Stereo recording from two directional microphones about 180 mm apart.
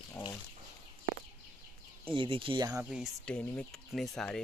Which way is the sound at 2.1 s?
30° right (ahead or behind).